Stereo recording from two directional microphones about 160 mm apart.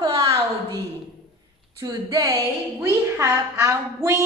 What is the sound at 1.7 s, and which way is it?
A woman's voice, 20° right (ahead or behind).